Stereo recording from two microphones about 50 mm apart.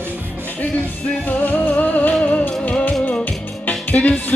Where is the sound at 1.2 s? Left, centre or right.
Left.